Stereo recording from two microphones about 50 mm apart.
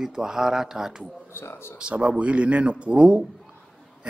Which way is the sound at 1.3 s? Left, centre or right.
Left.